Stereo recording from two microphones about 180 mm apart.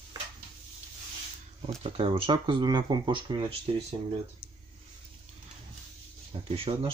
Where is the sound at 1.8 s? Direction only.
25° right (ahead or behind).